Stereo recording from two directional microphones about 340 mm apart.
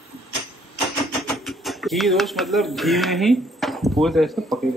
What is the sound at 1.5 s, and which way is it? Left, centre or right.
Speech, centre.